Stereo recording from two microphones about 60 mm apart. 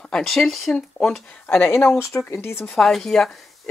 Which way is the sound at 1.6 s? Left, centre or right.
Left.